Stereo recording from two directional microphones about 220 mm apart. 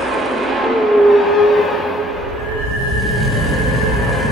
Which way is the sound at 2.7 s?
Centre (ahead or behind).